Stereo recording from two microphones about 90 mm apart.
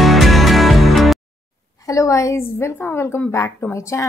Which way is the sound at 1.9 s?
35° left (ahead or behind).